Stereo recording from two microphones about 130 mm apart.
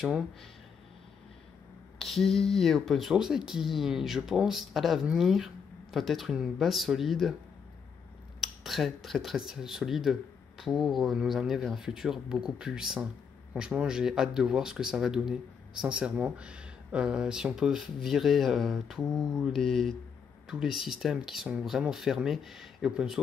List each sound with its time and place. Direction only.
2.0 s speech: centre (ahead or behind)
8.4 s speech: centre (ahead or behind)